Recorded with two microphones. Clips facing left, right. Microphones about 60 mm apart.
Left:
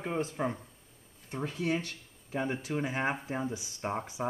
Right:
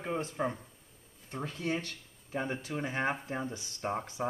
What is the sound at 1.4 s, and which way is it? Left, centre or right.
Speech, centre.